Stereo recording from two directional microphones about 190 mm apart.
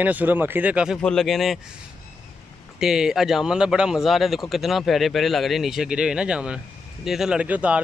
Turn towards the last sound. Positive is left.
turn(degrees=-5)  # may be behind; listen again after turning